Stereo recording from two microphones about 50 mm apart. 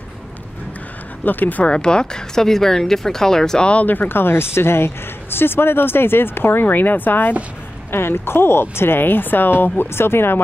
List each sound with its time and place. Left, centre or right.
1.2 s speech: left
1.6 s speech: centre
3.7 s speech: left
7.9 s speech: left